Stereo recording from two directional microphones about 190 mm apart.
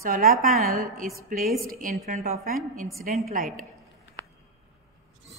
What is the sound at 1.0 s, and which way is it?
Speech, centre (ahead or behind).